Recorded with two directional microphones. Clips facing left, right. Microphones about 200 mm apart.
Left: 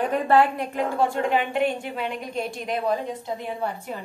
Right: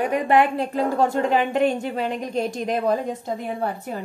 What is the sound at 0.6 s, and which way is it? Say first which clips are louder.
Speech: right 3 dB; 40° right (ahead or behind).